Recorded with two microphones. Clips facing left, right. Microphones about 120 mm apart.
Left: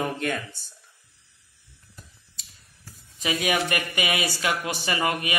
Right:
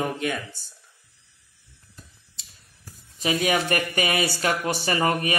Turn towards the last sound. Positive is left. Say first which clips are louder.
# right 3 dB
turn(degrees=-35)  # may be behind; listen again after turning